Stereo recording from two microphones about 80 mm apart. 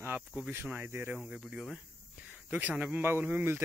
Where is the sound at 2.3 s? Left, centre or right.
Right.